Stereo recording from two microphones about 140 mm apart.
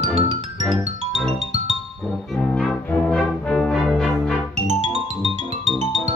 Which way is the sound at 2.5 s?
5° left (ahead or behind).